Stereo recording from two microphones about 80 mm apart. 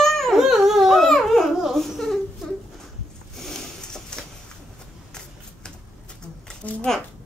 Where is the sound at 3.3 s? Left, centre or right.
Centre.